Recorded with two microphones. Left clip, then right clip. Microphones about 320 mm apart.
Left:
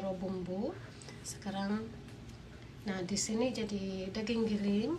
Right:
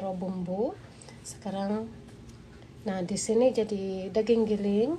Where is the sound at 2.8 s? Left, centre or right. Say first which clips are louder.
Right 7 dB; centre.